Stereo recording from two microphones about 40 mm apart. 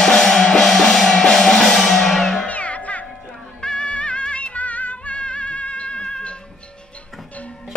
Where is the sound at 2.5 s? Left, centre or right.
Left.